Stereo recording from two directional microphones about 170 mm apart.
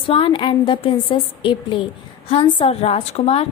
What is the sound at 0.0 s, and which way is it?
A woman's voice, 30° left (ahead or behind).